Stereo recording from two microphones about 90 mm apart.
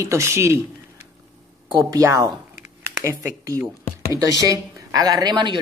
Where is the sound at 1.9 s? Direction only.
40° right (ahead or behind).